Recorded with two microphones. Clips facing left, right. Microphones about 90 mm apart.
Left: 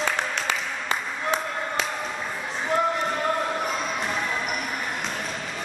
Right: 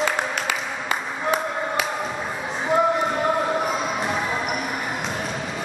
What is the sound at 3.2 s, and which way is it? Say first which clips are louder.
Music: right 4 dB; 10° right (ahead or behind).